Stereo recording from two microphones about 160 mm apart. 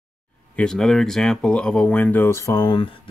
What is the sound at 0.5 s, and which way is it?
Speech, 5° left (ahead or behind).